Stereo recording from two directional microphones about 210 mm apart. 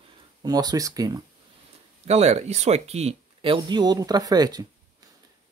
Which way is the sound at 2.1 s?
30° right (ahead or behind).